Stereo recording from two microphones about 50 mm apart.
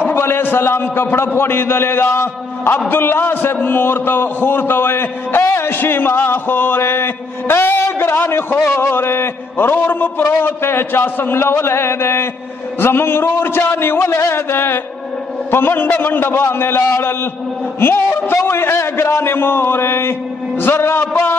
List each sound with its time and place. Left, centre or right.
0.1 s a man's voice: left
14.0 s a sound: left
15.5 s a man's voice: left